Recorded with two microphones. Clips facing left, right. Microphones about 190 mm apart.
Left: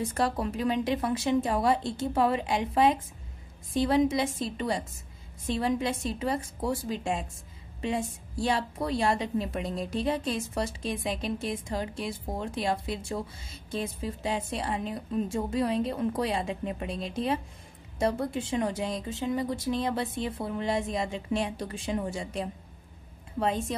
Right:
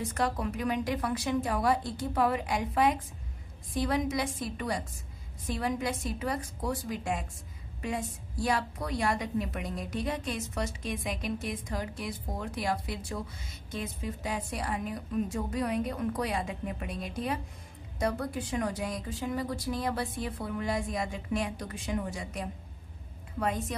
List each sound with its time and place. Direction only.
0.0 s a woman's voice: 30° left (ahead or behind)